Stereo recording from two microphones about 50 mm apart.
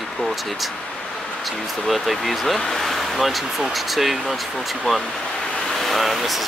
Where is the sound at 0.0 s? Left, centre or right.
Centre.